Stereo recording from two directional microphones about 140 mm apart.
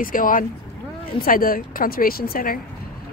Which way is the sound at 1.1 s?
90° left.